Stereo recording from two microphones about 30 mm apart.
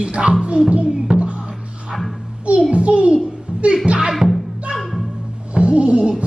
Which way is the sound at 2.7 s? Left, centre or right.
Right.